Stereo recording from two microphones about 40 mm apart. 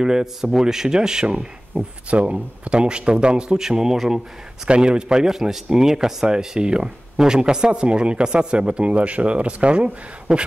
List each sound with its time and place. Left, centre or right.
0.0 s a man's voice: centre
4.6 s speech: right
10.3 s speech: centre